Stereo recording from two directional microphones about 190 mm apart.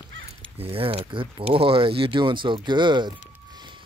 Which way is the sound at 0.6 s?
30° right (ahead or behind).